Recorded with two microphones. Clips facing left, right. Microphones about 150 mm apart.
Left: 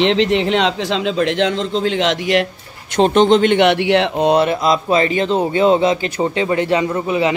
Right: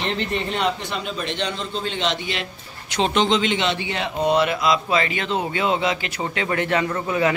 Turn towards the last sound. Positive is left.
turn(degrees=20)  # may be behind; listen again after turning